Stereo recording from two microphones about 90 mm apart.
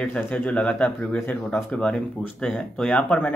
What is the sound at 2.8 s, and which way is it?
Speech, 15° left (ahead or behind).